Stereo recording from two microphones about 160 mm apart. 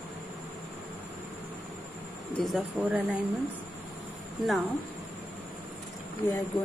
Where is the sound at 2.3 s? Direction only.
Centre (ahead or behind).